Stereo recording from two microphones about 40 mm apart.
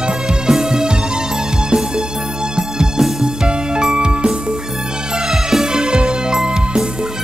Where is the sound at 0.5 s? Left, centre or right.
Centre.